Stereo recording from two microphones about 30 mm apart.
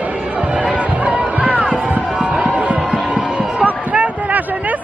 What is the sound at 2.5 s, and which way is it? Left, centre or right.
Music, right.